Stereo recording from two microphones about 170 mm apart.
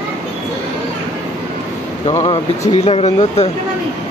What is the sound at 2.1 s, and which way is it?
Speech, 20° left (ahead or behind).